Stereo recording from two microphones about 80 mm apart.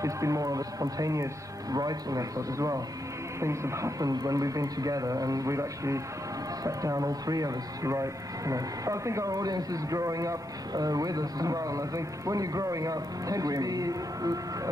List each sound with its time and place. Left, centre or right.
0.0 s speech: right